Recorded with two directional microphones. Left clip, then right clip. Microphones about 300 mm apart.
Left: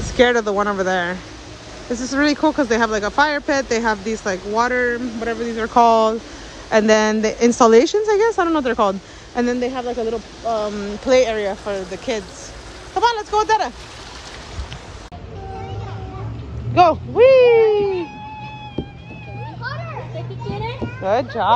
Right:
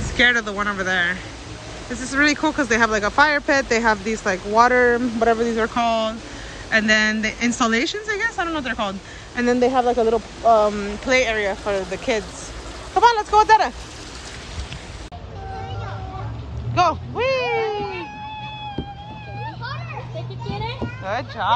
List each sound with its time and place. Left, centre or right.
0.2 s a woman's voice: centre
5.8 s a woman's voice: left
9.4 s speech: centre
16.8 s speech: centre
17.2 s a sound: centre
20.4 s children playing: right